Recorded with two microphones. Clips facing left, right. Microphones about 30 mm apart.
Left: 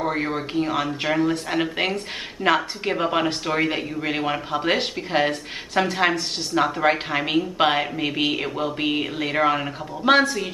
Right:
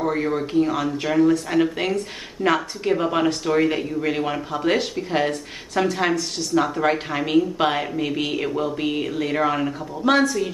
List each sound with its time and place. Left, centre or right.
0.0 s speech: centre